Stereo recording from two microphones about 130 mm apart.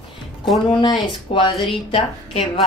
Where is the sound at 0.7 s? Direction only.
40° left (ahead or behind).